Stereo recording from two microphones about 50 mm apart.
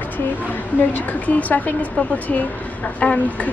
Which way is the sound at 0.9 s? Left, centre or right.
Left.